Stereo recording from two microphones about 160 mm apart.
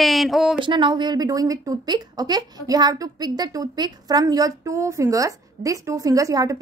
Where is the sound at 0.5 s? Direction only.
30° right (ahead or behind).